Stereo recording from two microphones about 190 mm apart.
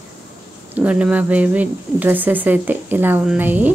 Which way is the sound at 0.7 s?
5° right (ahead or behind).